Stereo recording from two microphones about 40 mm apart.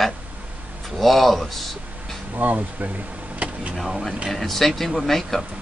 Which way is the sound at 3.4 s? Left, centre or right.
Right.